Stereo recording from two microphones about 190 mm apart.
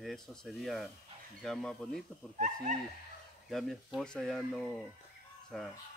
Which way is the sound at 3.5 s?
Centre (ahead or behind).